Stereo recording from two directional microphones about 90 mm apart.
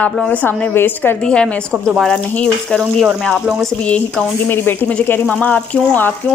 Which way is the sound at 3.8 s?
10° left (ahead or behind).